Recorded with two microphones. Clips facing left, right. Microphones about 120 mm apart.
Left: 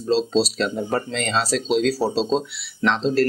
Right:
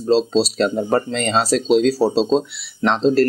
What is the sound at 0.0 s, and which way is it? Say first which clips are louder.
Speech: right 3 dB; 35° right (ahead or behind).